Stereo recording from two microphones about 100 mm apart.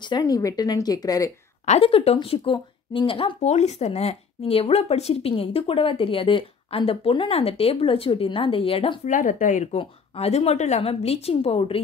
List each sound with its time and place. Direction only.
0.2 s speech: 35° left (ahead or behind)
1.8 s speech: 75° left (ahead or behind)
2.2 s speech: 60° left (ahead or behind)
9.8 s a woman's voice: 90° left